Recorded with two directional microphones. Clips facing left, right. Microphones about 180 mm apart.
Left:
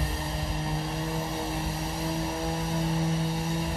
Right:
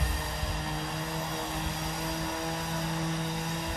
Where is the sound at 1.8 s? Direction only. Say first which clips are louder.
Left 3 dB; 30° left (ahead or behind).